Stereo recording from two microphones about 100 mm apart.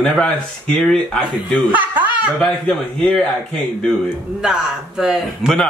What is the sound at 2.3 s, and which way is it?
Speech, 5° left (ahead or behind).